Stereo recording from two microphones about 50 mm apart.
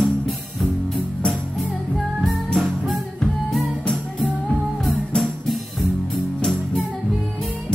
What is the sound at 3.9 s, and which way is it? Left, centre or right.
Music, centre.